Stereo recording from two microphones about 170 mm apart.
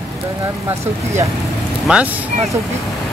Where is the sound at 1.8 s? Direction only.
5° right (ahead or behind).